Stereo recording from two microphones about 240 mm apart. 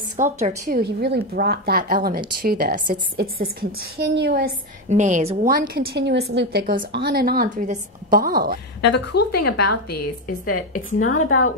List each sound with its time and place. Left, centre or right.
0.2 s a woman's voice: right
4.8 s speech: right
8.9 s speech: left
10.2 s speech: left